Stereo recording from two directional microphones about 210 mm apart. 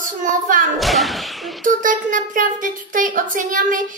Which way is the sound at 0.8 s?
Centre (ahead or behind).